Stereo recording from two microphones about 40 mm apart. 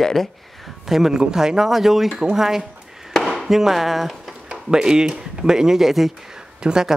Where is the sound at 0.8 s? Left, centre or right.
Centre.